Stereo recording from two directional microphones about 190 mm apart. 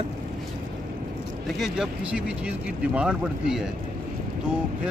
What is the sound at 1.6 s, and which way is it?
Speech, 5° right (ahead or behind).